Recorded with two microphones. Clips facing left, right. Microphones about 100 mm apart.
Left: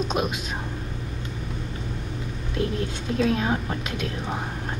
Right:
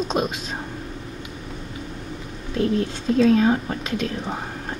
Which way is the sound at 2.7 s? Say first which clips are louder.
Right 6 dB; 35° right (ahead or behind).